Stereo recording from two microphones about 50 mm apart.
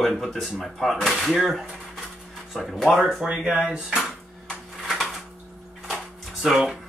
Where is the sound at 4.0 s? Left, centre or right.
Centre.